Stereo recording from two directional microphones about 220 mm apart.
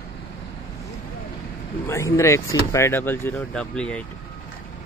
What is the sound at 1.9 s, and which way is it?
Speech, 15° left (ahead or behind).